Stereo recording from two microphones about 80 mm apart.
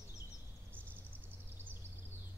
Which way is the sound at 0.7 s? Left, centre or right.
Right.